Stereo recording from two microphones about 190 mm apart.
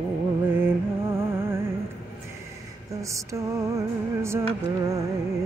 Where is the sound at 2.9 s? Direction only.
15° right (ahead or behind).